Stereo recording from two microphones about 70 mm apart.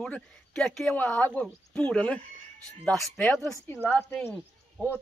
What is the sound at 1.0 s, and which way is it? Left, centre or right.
Speech, left.